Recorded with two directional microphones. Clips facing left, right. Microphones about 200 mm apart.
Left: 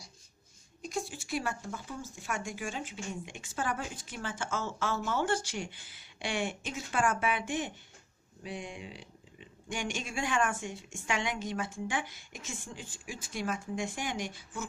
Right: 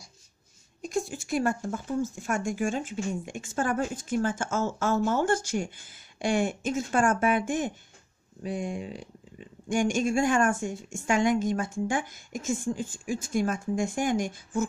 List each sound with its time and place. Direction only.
0.8 s speech: 45° right (ahead or behind)